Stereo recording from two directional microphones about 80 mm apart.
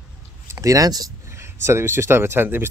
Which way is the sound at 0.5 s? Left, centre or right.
Right.